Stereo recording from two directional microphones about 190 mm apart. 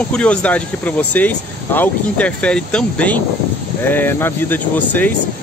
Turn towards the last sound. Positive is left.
turn(degrees=10)  # may be behind; listen again after turning